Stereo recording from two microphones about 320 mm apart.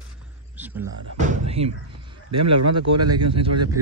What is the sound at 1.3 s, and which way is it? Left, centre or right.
Door, centre.